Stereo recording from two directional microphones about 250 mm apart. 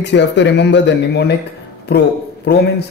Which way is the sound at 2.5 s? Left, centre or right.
Left.